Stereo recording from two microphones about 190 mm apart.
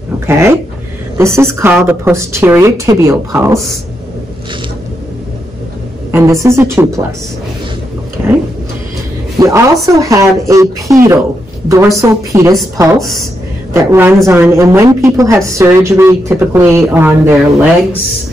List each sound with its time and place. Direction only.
0.3 s a woman's voice: 15° right (ahead or behind)
6.1 s a woman's voice: 15° right (ahead or behind)
8.2 s a sound: 15° right (ahead or behind)
9.4 s a woman's voice: 15° right (ahead or behind)